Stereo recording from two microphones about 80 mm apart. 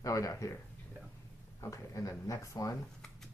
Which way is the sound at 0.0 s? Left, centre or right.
Left.